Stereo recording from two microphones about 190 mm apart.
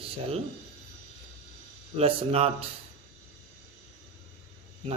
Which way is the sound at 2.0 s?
30° right (ahead or behind).